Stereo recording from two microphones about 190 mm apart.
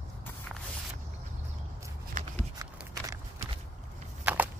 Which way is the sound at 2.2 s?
45° right (ahead or behind).